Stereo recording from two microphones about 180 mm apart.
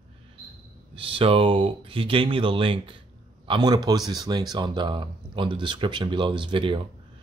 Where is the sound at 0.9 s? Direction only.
30° right (ahead or behind).